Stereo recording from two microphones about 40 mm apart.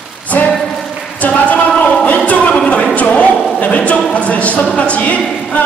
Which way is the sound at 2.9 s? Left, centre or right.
Left.